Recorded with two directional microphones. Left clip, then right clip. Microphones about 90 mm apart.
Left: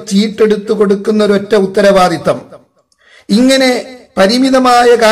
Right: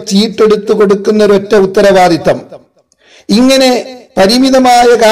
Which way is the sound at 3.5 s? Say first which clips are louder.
Right 3 dB; 40° right (ahead or behind).